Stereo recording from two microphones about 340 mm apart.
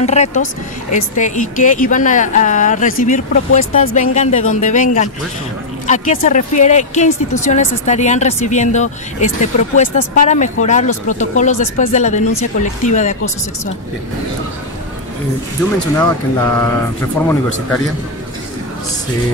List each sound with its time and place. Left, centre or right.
0.0 s speech: centre
16.0 s speech: centre